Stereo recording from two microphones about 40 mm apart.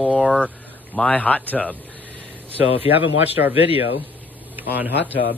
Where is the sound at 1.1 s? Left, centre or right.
Left.